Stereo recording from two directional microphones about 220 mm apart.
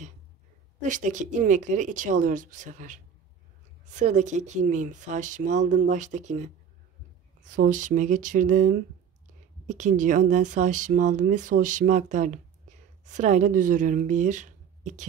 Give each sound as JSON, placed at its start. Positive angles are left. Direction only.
{"t": 0.8, "sound": "speech", "side_deg": -35}